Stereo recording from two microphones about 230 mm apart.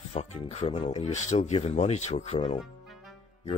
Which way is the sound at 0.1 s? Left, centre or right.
Left.